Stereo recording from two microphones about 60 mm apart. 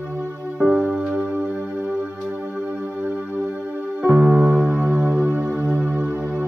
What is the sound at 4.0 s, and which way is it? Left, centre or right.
Music, right.